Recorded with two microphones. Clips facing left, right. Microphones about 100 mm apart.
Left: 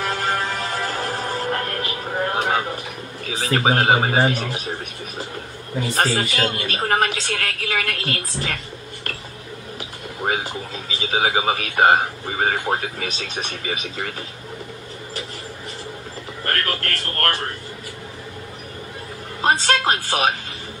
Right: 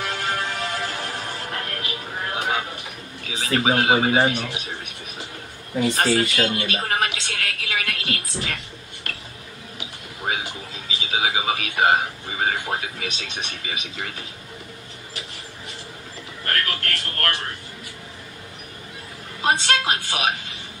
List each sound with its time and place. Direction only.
0.0 s music: 40° left (ahead or behind)
3.3 s a woman's voice: 40° left (ahead or behind)
5.9 s a woman's voice: 40° left (ahead or behind)
9.1 s a sound: 40° left (ahead or behind)
10.2 s a woman's voice: 40° left (ahead or behind)
16.4 s a woman's voice: 40° left (ahead or behind)
19.4 s a woman's voice: 40° left (ahead or behind)